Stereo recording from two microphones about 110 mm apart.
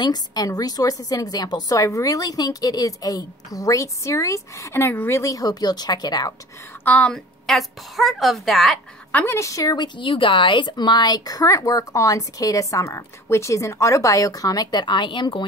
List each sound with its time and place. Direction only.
0.0 s a woman's voice: 35° left (ahead or behind)
6.8 s a woman's voice: 15° left (ahead or behind)
9.1 s a woman's voice: 20° left (ahead or behind); by 15.4 s 45° left (ahead or behind)